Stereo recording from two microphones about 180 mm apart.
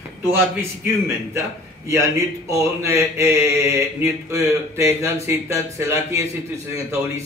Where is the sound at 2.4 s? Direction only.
15° right (ahead or behind).